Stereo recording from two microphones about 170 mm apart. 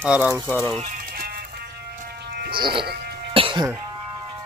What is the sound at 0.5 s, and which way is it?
Speech, 5° left (ahead or behind).